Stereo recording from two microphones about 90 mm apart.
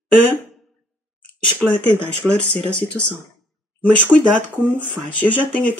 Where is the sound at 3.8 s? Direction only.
15° left (ahead or behind).